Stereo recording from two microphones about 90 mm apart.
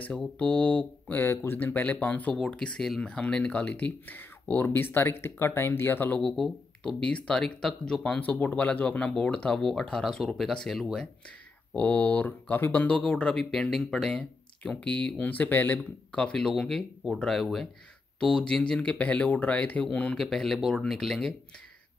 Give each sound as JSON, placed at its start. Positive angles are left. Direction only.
{"t": 0.4, "sound": "speech", "side_deg": 15}
{"t": 6.2, "sound": "speech", "side_deg": 5}
{"t": 11.7, "sound": "speech", "side_deg": 15}
{"t": 16.2, "sound": "speech", "side_deg": 10}